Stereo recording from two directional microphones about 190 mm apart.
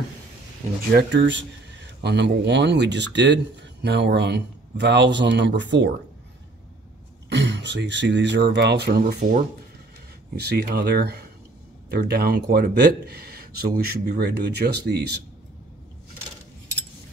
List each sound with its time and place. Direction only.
0.9 s speech: 65° right (ahead or behind)
7.2 s speech: 65° right (ahead or behind); by 9.4 s 45° right (ahead or behind)
10.3 s speech: 55° right (ahead or behind)